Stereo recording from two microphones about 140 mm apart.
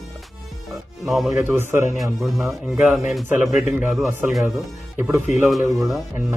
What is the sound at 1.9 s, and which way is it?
A man's voice, centre (ahead or behind).